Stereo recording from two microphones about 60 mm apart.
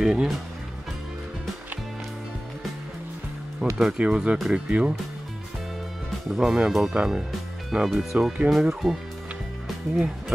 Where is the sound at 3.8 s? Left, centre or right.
Centre.